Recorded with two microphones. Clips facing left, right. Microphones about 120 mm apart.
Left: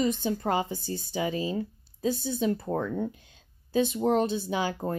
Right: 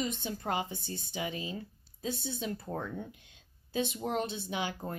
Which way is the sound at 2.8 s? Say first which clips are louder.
Left 9 dB; 55° left (ahead or behind).